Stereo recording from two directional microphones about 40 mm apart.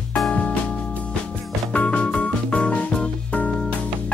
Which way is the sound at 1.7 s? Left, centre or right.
Left.